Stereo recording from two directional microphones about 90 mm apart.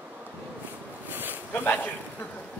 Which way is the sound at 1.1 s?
20° right (ahead or behind).